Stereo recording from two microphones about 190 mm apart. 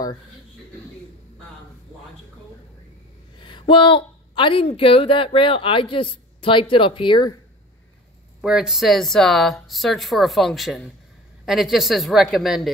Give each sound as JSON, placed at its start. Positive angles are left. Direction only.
{"t": 3.3, "sound": "a woman's voice", "side_deg": 25}
{"t": 8.4, "sound": "speech", "side_deg": -5}